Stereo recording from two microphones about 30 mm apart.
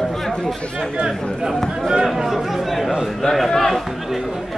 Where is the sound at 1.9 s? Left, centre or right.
Centre.